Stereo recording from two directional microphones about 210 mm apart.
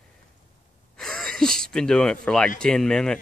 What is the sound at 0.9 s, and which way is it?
Speech, centre (ahead or behind).